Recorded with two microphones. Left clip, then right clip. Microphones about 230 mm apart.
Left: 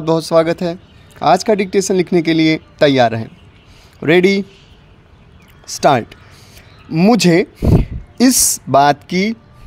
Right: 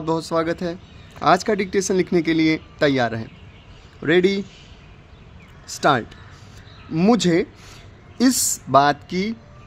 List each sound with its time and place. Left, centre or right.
0.0 s a man's voice: left
5.7 s speech: left